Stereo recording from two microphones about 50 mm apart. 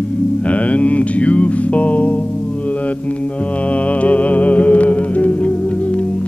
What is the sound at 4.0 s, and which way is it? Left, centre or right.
Music, left.